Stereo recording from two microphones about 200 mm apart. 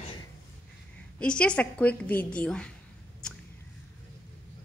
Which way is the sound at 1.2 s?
5° left (ahead or behind).